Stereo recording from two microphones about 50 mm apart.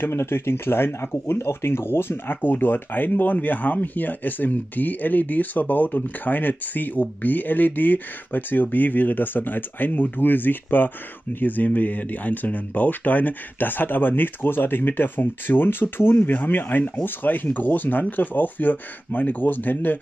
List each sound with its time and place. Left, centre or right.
0.0 s speech: left